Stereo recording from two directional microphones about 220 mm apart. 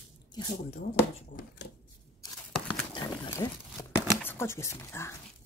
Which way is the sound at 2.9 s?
15° left (ahead or behind).